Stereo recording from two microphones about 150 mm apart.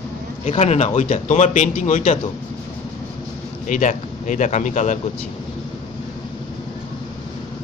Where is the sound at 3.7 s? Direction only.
55° left (ahead or behind).